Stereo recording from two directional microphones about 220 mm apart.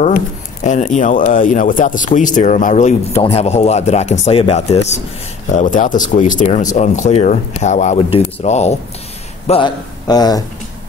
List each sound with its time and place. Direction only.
0.7 s a man's voice: 30° left (ahead or behind)